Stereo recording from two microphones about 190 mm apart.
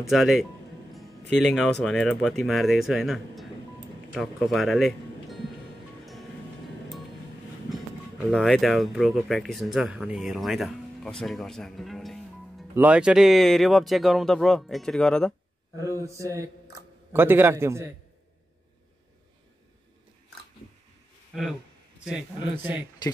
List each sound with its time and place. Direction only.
0.1 s speech: centre (ahead or behind)
8.3 s speech: centre (ahead or behind)
15.8 s a man's voice: 15° right (ahead or behind)
21.3 s a man's voice: centre (ahead or behind)